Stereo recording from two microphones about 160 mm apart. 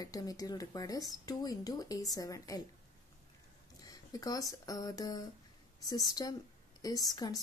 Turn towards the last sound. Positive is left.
turn(degrees=25)  # may be behind; listen again after turning